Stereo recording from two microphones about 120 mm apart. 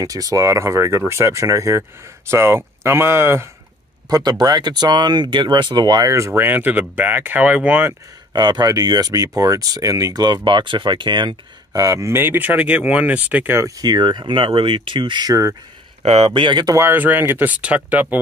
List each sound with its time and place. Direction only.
0.0 s speech: 30° right (ahead or behind)
4.1 s speech: 35° right (ahead or behind); by 7.9 s 15° right (ahead or behind)
8.3 s speech: 35° right (ahead or behind); by 18.2 s 15° right (ahead or behind)